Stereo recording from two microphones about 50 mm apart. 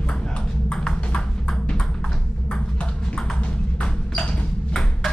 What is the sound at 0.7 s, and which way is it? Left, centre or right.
Ping, centre.